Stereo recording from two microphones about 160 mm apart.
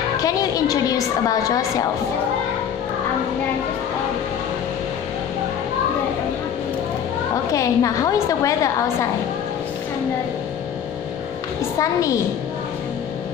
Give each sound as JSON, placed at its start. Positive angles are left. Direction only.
{"t": 0.2, "sound": "a woman's voice", "side_deg": 25}
{"t": 7.5, "sound": "a woman's voice", "side_deg": 20}
{"t": 11.8, "sound": "a woman's voice", "side_deg": 20}